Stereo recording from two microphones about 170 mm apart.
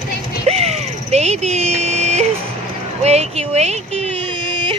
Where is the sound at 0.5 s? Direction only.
40° right (ahead or behind).